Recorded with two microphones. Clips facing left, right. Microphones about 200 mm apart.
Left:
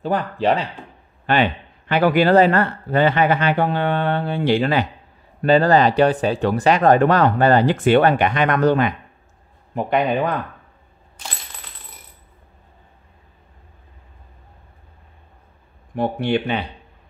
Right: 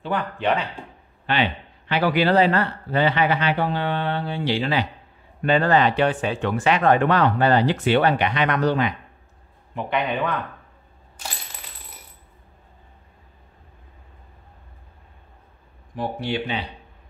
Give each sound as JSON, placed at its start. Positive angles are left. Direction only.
{"t": 0.0, "sound": "speech", "side_deg": 40}
{"t": 1.2, "sound": "a man's voice", "side_deg": 50}
{"t": 5.4, "sound": "a man's voice", "side_deg": 35}
{"t": 9.8, "sound": "speech", "side_deg": 40}
{"t": 15.9, "sound": "speech", "side_deg": 60}